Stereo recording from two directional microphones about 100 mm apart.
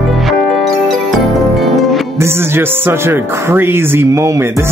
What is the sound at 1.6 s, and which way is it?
Music, centre (ahead or behind).